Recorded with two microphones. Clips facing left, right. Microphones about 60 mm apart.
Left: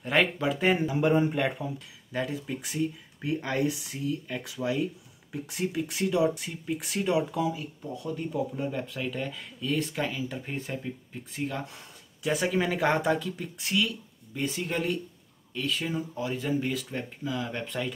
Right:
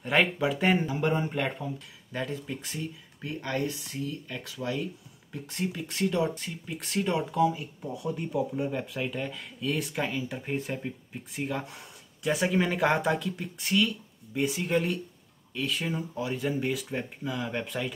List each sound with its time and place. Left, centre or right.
0.0 s speech: centre
1.6 s speech: centre
2.1 s speech: centre
7.8 s speech: centre
8.1 s speech: centre